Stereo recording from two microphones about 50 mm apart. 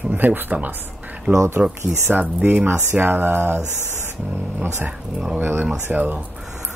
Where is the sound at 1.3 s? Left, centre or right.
Right.